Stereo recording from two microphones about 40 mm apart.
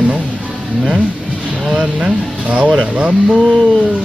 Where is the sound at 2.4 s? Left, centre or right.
Right.